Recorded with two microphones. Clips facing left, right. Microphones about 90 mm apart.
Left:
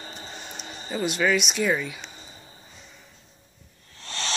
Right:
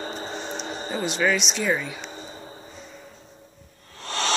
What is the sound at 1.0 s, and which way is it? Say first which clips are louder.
Speech: left 1 dB; 5° left (ahead or behind).